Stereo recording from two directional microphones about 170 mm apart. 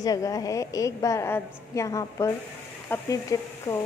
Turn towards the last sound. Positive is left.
turn(degrees=20)  # may be behind; listen again after turning